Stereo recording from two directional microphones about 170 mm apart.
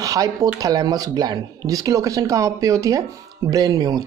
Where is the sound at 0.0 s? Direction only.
20° right (ahead or behind).